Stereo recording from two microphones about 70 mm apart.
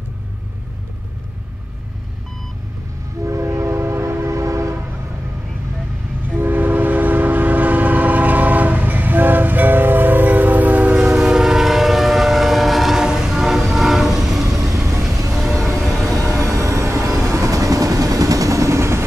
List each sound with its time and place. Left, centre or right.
3.3 s train: right
6.3 s train: right
11.1 s train: centre
14.5 s train: right
15.3 s a sound: centre
16.4 s music: right
17.2 s vehicle: right